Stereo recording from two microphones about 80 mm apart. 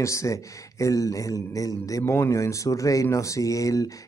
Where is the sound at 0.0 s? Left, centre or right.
Left.